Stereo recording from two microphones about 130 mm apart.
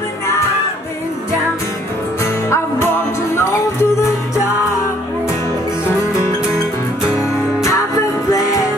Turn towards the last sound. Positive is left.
turn(degrees=25)  # may be behind; listen again after turning